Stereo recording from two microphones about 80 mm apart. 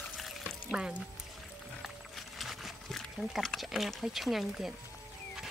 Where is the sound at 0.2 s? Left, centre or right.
Centre.